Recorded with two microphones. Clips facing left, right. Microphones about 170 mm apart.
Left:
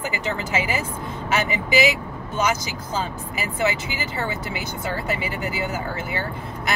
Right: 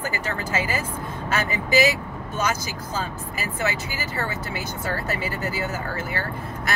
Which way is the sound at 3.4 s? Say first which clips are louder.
Left 3 dB; 15° left (ahead or behind).